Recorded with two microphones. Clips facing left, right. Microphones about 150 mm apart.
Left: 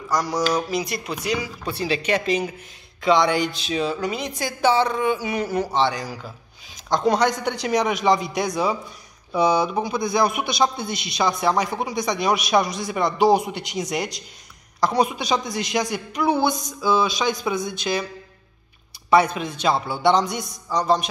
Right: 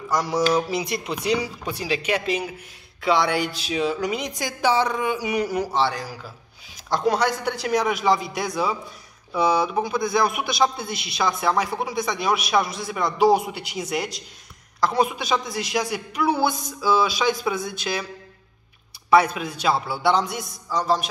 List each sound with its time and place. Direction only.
0.1 s speech: 25° right (ahead or behind)
1.6 s a man's voice: 15° right (ahead or behind)
19.0 s a man's voice: 5° right (ahead or behind)